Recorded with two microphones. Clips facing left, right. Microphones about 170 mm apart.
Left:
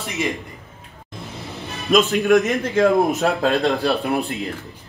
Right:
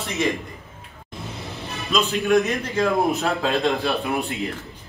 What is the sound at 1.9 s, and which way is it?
A man's voice, 55° left (ahead or behind).